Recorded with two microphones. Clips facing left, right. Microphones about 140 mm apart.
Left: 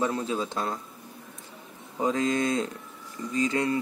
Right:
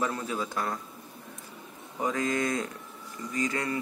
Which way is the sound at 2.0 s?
25° left (ahead or behind).